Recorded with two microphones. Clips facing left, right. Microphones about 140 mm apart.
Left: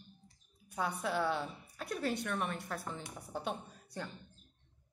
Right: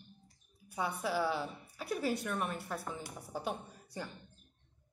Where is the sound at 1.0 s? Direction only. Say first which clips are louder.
Right 1 dB; 5° right (ahead or behind).